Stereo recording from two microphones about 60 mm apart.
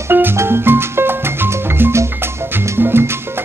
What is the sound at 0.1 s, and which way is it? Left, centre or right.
Music, right.